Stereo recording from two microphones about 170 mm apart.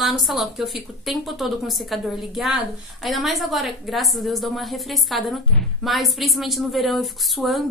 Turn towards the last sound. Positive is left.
turn(degrees=0)  # may be behind; listen again after turning